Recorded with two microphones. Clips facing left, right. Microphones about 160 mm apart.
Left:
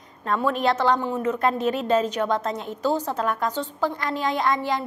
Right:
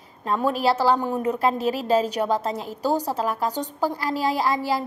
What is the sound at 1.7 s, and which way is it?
Speech, 35° right (ahead or behind).